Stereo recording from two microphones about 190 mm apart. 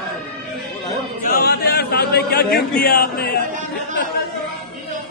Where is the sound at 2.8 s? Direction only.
55° left (ahead or behind).